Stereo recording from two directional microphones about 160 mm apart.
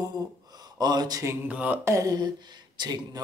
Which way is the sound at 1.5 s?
10° right (ahead or behind).